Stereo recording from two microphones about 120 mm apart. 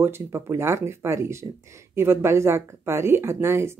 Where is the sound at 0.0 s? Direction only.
20° right (ahead or behind).